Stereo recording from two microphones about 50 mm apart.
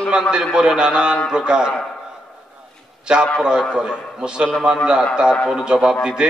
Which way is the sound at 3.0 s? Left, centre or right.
Centre.